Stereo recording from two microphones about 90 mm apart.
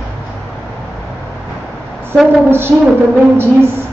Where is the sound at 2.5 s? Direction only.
25° right (ahead or behind).